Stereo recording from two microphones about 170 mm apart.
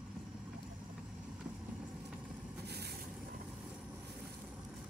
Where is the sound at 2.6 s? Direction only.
70° right (ahead or behind).